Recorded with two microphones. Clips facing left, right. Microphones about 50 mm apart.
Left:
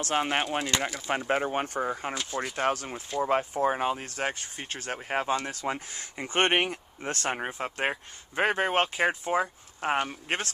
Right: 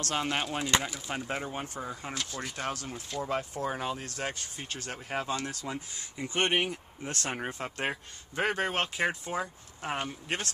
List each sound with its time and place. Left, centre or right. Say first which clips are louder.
0.0 s speech: left 4 dB; left
1.2 s speech: left 10 dB; left
7.3 s speech: left 3 dB; centre; by 10.5 s left